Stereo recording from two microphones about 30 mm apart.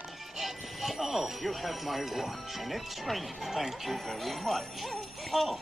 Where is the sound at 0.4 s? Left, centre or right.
Centre.